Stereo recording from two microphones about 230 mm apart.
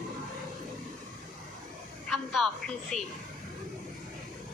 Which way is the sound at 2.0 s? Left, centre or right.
Centre.